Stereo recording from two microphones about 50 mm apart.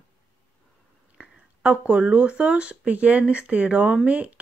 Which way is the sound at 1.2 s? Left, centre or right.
Right.